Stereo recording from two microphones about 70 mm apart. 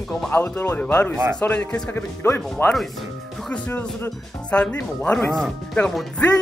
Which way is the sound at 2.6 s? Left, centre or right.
Left.